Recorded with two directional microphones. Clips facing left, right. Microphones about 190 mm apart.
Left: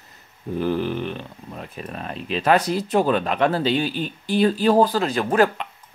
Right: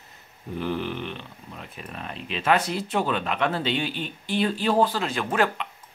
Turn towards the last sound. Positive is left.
turn(degrees=40)  # may be behind; listen again after turning